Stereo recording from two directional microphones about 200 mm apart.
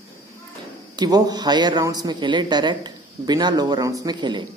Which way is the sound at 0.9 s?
20° right (ahead or behind).